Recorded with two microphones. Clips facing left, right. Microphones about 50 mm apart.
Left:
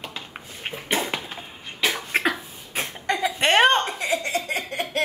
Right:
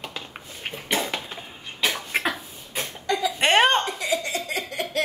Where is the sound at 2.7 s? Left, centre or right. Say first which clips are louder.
Left 1 dB; left.